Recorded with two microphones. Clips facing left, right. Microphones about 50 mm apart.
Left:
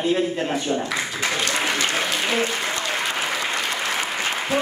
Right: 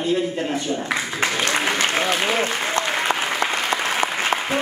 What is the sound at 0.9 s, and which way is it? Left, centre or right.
Applause, right.